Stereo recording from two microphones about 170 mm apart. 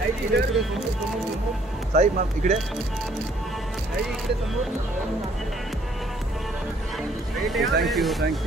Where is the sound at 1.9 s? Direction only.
45° right (ahead or behind).